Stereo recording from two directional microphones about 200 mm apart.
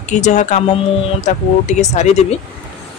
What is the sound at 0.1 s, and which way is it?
Speech, 35° left (ahead or behind).